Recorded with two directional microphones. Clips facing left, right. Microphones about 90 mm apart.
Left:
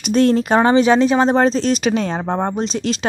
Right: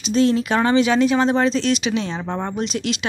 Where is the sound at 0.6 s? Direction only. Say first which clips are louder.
Left 4 dB; 35° left (ahead or behind).